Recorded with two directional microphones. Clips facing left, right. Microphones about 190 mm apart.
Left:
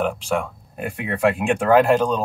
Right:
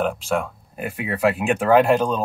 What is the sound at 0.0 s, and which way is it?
Speech, centre (ahead or behind).